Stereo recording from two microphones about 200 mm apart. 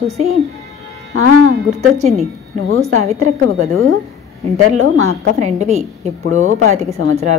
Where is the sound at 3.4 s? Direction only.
90° right.